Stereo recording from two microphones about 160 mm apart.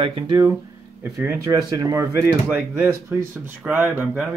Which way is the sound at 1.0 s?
15° right (ahead or behind).